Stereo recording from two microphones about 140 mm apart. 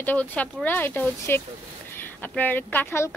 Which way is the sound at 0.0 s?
10° left (ahead or behind).